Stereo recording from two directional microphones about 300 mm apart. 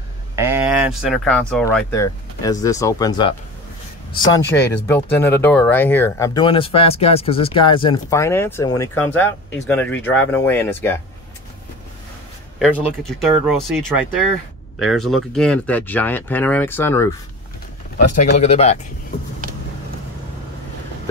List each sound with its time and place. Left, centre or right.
0.4 s speech: centre
12.5 s speech: centre
17.9 s speech: left